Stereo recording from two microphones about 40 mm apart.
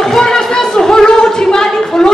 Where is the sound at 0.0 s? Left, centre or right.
Centre.